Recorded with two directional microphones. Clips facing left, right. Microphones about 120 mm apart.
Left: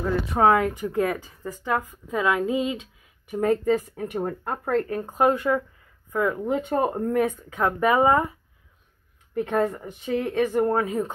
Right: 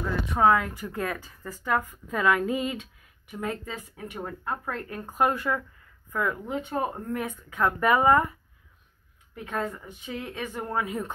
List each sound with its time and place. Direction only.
0.0 s speech: 30° left (ahead or behind)
3.3 s speech: 40° left (ahead or behind)
5.0 s speech: 20° left (ahead or behind)
6.4 s speech: 50° left (ahead or behind)
7.3 s speech: 30° left (ahead or behind)
9.3 s speech: 55° left (ahead or behind); by 11.1 s 35° left (ahead or behind)